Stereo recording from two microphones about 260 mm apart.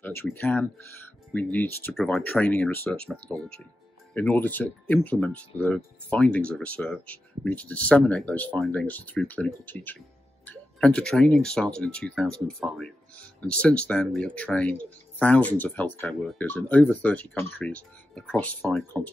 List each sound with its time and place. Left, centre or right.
0.0 s speech: centre